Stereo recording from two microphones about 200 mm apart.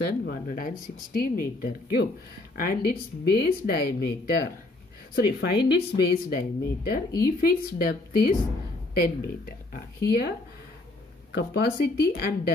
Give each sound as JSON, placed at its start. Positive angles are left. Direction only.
{"t": 0.0, "sound": "speech", "side_deg": 50}
{"t": 11.3, "sound": "speech", "side_deg": 55}